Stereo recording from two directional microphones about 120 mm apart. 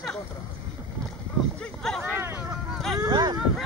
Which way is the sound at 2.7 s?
Centre (ahead or behind).